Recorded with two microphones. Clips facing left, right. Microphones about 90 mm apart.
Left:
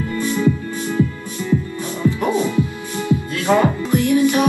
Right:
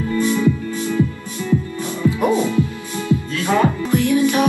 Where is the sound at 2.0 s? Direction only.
20° right (ahead or behind).